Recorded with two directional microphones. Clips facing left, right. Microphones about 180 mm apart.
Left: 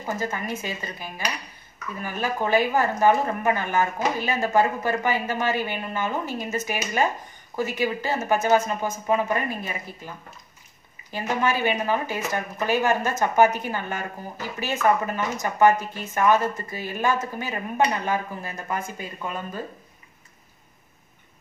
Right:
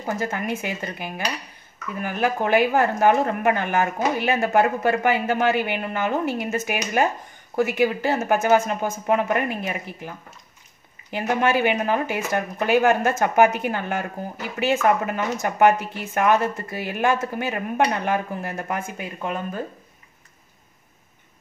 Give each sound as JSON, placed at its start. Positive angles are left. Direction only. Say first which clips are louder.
{"t": 0.3, "sound": "speech", "louder": "right 3 dB", "side_deg": -60}